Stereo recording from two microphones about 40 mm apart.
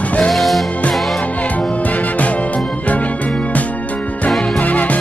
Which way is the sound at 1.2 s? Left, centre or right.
Left.